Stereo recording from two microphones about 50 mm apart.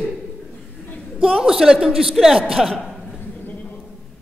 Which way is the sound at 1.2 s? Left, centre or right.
Centre.